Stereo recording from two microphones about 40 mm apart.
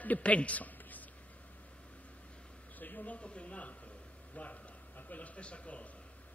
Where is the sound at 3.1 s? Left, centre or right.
Left.